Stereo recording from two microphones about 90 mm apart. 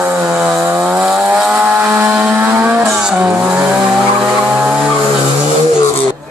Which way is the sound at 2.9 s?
10° right (ahead or behind).